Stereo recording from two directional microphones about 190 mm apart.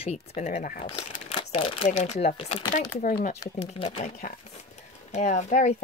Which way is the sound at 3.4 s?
30° left (ahead or behind).